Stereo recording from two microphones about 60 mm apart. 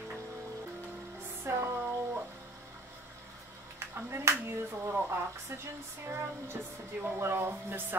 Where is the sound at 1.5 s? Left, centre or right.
Right.